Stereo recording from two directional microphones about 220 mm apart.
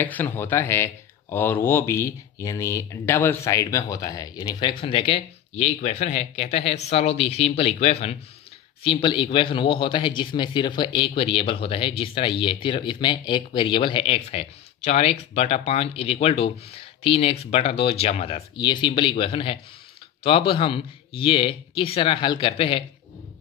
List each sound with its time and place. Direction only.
0.0 s speech: 10° left (ahead or behind); by 22.8 s 25° left (ahead or behind)